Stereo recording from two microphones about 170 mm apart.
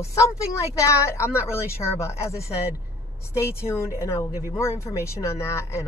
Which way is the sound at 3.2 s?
15° left (ahead or behind).